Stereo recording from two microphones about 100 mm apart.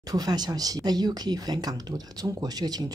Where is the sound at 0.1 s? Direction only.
40° right (ahead or behind).